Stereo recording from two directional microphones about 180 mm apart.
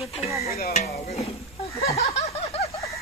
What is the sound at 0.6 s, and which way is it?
Stir, 50° left (ahead or behind).